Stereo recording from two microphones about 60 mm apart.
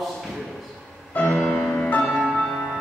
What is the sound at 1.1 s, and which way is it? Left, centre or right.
Music, left.